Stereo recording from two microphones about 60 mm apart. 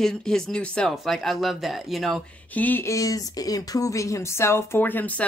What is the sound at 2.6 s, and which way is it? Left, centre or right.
Speech, left.